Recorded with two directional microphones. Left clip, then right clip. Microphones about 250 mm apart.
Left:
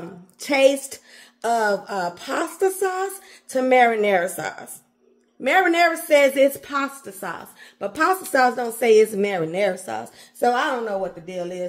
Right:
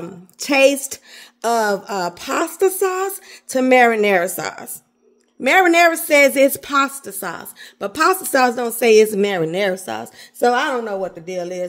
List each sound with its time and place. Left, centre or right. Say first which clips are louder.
0.4 s speech: right 3 dB; right